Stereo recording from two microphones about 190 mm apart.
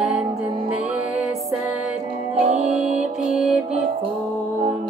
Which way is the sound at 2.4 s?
35° right (ahead or behind).